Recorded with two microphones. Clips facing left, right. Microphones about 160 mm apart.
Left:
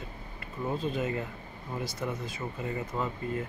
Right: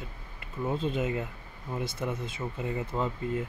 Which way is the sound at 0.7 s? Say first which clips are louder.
Right 1 dB; 20° right (ahead or behind).